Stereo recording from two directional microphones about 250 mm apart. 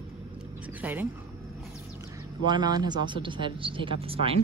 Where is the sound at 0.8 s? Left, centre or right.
Centre.